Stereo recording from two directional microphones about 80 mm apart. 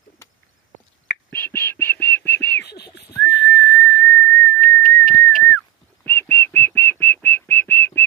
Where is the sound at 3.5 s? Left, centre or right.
Left.